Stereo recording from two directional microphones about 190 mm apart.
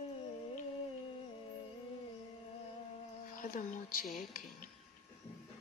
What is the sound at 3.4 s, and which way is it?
Speech, 45° left (ahead or behind).